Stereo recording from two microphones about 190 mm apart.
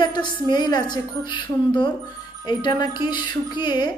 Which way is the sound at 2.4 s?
20° left (ahead or behind).